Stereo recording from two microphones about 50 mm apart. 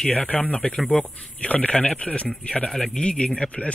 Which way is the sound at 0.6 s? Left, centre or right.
Centre.